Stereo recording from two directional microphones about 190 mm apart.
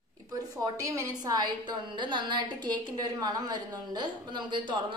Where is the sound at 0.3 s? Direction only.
20° right (ahead or behind).